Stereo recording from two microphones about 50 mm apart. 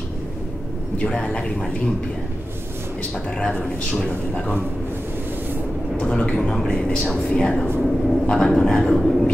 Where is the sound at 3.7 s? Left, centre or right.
Left.